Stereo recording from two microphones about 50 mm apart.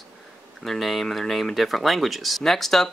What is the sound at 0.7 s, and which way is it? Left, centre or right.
Speech, centre.